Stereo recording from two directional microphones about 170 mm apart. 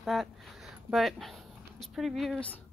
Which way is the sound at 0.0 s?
Centre (ahead or behind).